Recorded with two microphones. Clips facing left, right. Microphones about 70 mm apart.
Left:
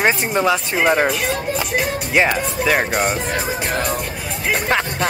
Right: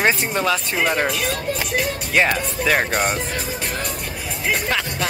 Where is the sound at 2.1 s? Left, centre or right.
Centre.